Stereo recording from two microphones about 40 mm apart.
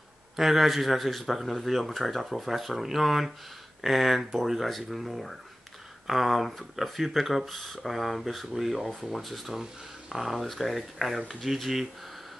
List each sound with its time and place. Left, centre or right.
0.4 s speech: centre